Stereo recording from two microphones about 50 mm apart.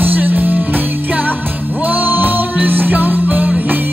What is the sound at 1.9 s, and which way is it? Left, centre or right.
Music, right.